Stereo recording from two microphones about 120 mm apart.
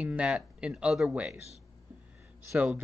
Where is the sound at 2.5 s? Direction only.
10° right (ahead or behind).